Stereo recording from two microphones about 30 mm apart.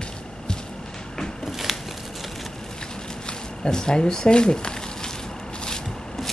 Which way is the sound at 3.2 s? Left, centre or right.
Left.